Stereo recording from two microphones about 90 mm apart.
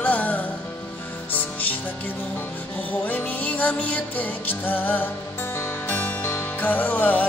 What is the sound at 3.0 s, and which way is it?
Music, 15° left (ahead or behind).